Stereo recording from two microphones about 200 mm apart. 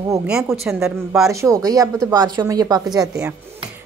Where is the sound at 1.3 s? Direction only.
15° right (ahead or behind).